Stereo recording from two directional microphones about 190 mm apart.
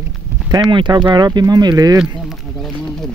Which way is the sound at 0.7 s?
25° right (ahead or behind).